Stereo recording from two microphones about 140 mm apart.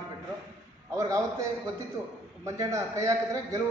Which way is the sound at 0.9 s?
20° right (ahead or behind).